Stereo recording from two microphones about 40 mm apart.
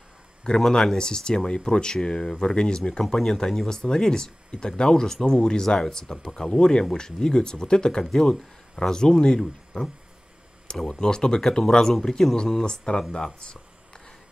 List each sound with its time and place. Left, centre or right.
0.6 s speech: centre